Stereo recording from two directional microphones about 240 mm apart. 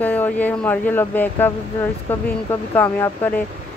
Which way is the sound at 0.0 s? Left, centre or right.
Centre.